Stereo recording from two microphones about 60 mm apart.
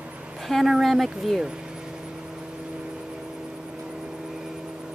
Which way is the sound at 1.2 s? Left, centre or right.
Centre.